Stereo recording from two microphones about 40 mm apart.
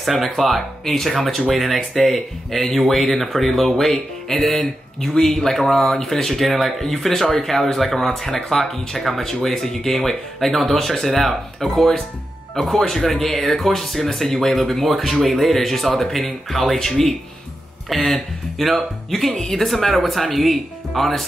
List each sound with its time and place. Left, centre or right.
0.0 s speech: centre
8.3 s speech: centre
8.5 s speech: centre